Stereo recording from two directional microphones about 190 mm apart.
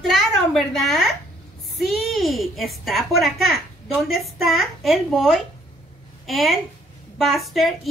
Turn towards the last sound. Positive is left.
turn(degrees=0)  # may be behind; listen again after turning